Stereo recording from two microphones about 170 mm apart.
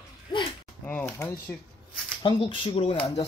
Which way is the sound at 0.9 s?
10° left (ahead or behind).